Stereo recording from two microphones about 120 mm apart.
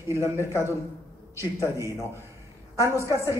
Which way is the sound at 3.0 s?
25° right (ahead or behind).